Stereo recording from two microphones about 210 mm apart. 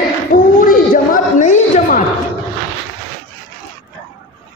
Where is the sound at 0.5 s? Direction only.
40° left (ahead or behind).